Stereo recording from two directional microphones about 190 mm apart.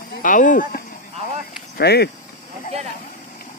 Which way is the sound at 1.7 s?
60° left (ahead or behind).